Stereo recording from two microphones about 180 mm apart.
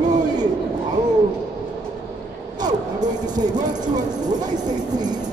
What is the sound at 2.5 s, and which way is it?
A woman's voice, 20° right (ahead or behind).